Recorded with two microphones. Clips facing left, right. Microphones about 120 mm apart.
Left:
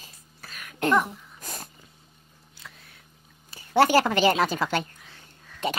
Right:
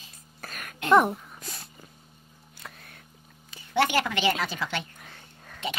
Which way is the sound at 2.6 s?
50° right (ahead or behind).